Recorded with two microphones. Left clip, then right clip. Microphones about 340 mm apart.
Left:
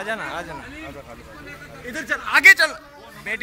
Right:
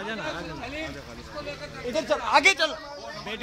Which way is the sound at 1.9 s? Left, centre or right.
Centre.